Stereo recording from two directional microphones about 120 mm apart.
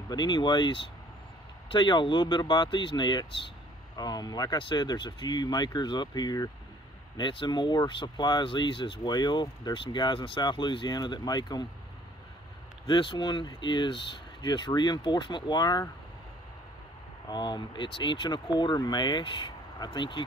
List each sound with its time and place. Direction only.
0.1 s speech: 40° left (ahead or behind)
12.8 s speech: 40° left (ahead or behind)
17.3 s speech: 35° left (ahead or behind)